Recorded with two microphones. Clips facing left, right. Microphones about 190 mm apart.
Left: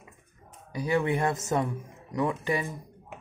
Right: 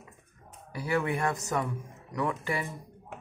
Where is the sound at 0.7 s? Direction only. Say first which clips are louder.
Left 3 dB; 20° left (ahead or behind).